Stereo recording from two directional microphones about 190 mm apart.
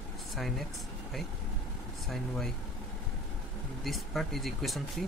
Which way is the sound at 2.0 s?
Centre (ahead or behind).